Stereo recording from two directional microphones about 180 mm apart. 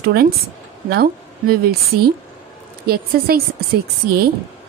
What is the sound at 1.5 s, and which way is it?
A woman's voice, 60° right (ahead or behind).